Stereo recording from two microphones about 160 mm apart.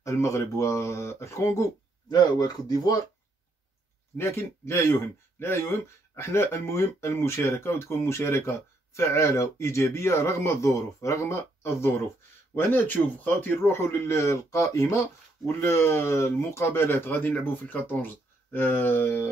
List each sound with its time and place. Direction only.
0.0 s speech: 20° left (ahead or behind)
4.2 s speech: 15° left (ahead or behind)